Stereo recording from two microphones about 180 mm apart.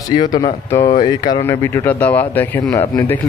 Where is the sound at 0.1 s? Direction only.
25° left (ahead or behind).